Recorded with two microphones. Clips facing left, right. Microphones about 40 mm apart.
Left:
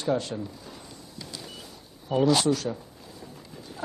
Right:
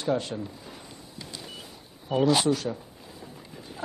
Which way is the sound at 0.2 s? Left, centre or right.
Right.